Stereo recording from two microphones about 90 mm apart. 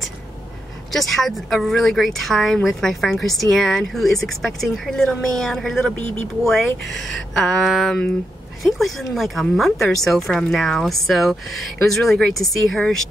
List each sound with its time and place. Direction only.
0.9 s speech: centre (ahead or behind)